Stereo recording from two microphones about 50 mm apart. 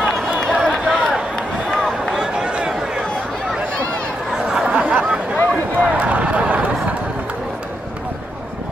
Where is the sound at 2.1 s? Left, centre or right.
Centre.